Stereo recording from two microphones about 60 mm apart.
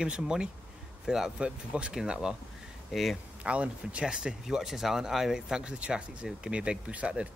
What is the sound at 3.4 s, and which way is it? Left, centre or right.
Speech, centre.